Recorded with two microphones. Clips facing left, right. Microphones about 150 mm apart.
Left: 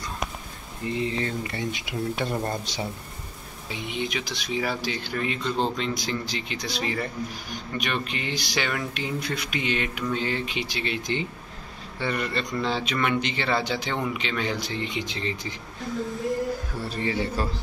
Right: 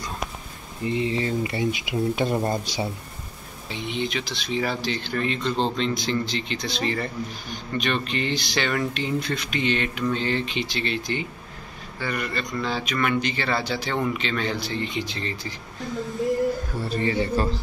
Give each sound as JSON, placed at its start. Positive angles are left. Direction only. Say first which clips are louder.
{"t": 1.0, "sound": "a man's voice", "louder": "right 3 dB", "side_deg": -5}
{"t": 3.9, "sound": "speech", "louder": "right 2 dB", "side_deg": 10}
{"t": 16.9, "sound": "a man's voice", "louder": "right 4 dB", "side_deg": 5}